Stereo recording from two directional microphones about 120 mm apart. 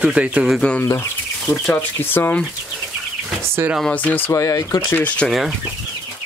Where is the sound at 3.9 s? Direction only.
15° left (ahead or behind).